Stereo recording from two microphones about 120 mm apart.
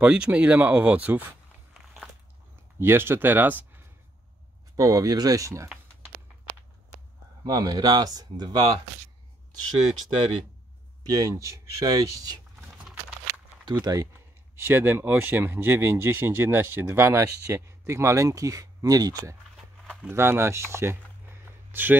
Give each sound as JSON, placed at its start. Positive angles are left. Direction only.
{"t": 0.0, "sound": "speech", "side_deg": -10}
{"t": 2.8, "sound": "speech", "side_deg": -20}
{"t": 4.7, "sound": "speech", "side_deg": -30}
{"t": 7.4, "sound": "speech", "side_deg": -35}
{"t": 11.1, "sound": "speech", "side_deg": -30}
{"t": 13.7, "sound": "speech", "side_deg": -35}
{"t": 14.5, "sound": "speech", "side_deg": -20}
{"t": 21.5, "sound": "a sound", "side_deg": -15}